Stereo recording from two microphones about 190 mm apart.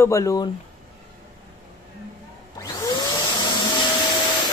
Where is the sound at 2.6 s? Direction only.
20° left (ahead or behind).